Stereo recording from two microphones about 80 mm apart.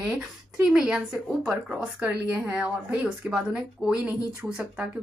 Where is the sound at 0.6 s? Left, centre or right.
Centre.